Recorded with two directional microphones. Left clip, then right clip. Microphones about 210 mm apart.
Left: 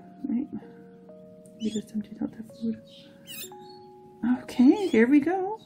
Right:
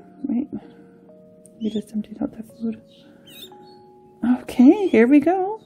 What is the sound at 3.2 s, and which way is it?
Music, 5° left (ahead or behind).